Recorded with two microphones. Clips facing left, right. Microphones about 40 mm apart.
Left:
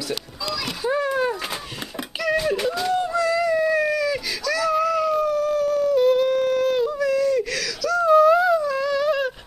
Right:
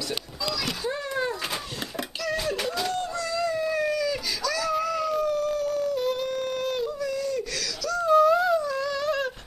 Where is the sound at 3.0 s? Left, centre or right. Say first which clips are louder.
Left 8 dB; centre.